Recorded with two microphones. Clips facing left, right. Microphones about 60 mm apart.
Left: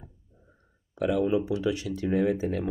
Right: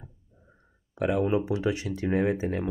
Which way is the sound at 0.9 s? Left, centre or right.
Right.